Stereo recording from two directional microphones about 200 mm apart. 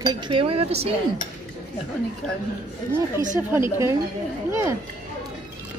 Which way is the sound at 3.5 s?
15° right (ahead or behind).